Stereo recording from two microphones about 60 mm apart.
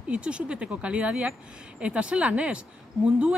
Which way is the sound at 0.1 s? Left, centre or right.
Centre.